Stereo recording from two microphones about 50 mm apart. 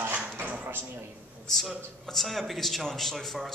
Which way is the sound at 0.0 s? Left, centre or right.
Right.